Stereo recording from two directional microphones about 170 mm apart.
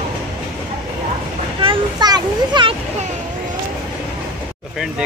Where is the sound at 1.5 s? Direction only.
25° right (ahead or behind).